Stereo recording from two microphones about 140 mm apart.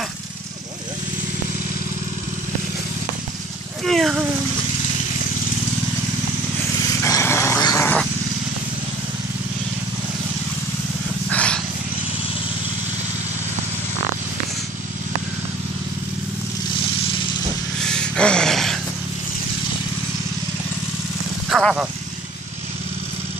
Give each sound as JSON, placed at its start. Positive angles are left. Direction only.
{"t": 3.8, "sound": "speech", "side_deg": 0}
{"t": 7.1, "sound": "dog", "side_deg": 20}
{"t": 11.2, "sound": "dog", "side_deg": 10}
{"t": 17.8, "sound": "a sound", "side_deg": 5}
{"t": 21.5, "sound": "vehicle", "side_deg": 0}